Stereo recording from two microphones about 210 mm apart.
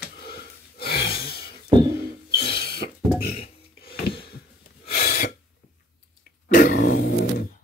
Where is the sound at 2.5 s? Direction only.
50° left (ahead or behind).